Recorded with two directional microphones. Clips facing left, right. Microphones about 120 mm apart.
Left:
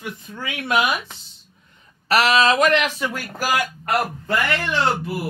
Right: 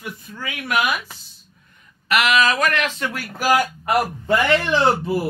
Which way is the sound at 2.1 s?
35° left (ahead or behind).